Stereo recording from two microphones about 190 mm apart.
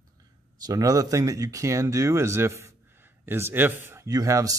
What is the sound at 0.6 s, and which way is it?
Speech, 20° right (ahead or behind).